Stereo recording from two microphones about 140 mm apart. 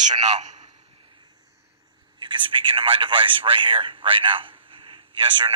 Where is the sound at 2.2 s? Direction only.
35° right (ahead or behind).